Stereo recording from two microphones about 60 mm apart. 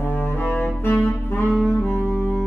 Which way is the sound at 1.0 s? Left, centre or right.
Left.